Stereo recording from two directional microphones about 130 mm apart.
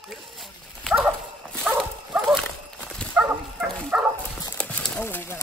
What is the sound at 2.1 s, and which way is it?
Dog, 5° right (ahead or behind).